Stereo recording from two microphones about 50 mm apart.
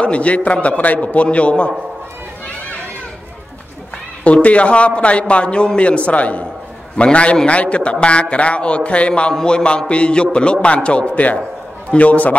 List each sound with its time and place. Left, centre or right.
0.0 s a man's voice: left
4.2 s a man's voice: left